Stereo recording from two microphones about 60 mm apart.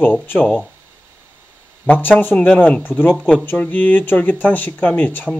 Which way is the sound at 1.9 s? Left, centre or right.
Left.